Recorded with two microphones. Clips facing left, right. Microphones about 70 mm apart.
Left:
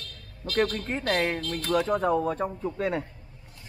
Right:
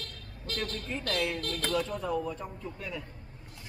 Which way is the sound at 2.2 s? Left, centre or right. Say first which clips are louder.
Left 9 dB; left.